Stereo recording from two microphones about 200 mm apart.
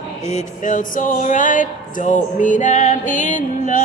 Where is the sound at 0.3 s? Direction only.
40° left (ahead or behind).